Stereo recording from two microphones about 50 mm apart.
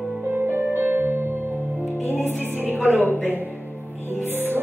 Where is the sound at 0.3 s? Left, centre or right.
Right.